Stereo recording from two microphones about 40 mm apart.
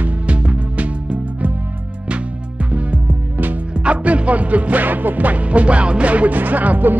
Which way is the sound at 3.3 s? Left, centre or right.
Right.